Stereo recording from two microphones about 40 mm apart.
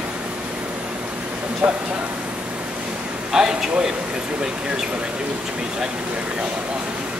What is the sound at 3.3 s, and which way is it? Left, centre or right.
Speech, centre.